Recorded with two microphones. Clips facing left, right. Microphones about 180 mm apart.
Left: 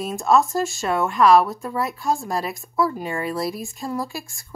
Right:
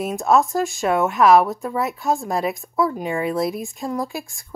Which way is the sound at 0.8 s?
20° right (ahead or behind).